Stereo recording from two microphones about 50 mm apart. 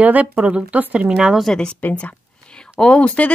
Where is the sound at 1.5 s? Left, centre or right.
Centre.